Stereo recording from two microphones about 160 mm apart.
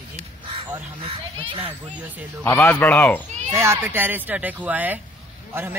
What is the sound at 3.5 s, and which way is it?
Speech, 15° right (ahead or behind).